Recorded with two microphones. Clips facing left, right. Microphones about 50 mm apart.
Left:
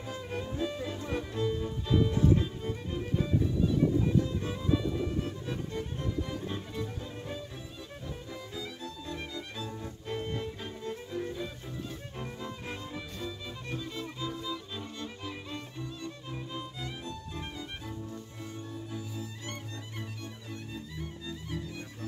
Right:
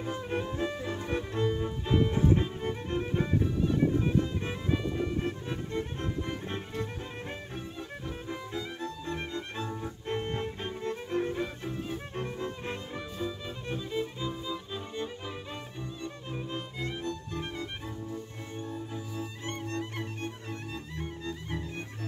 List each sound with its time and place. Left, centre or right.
0.0 s music: right
2.6 s music: right
5.9 s music: right
8.3 s music: right
13.2 s music: centre
17.0 s music: right
18.6 s music: right
19.6 s music: right